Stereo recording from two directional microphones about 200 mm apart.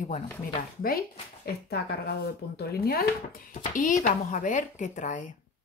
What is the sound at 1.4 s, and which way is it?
Speech, 55° left (ahead or behind).